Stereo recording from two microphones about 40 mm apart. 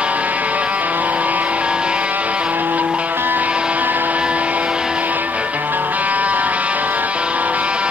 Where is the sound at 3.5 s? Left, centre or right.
Right.